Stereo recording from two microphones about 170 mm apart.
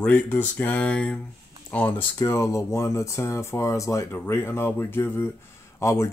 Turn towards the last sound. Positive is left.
turn(degrees=15)  # may be behind; listen again after turning